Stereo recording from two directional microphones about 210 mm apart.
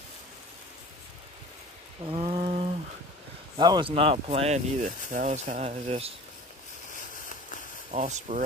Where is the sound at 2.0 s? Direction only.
25° right (ahead or behind).